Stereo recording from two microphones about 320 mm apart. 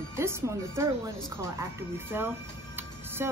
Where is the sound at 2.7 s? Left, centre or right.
Centre.